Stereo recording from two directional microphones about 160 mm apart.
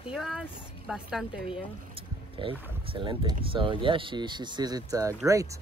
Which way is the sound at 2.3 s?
35° right (ahead or behind).